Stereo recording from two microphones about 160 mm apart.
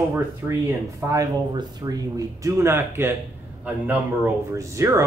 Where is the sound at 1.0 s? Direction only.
20° right (ahead or behind).